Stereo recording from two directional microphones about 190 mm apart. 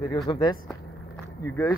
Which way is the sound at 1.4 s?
10° left (ahead or behind).